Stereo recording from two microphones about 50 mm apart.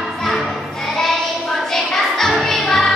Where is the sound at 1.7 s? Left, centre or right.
Centre.